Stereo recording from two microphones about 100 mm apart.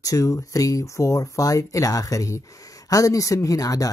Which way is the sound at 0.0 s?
35° left (ahead or behind).